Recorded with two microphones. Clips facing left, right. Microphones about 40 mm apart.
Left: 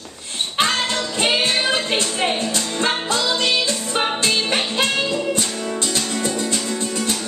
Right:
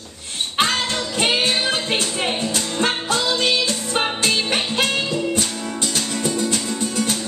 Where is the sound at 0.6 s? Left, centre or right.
Centre.